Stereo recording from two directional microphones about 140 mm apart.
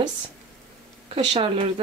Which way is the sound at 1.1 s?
45° right (ahead or behind).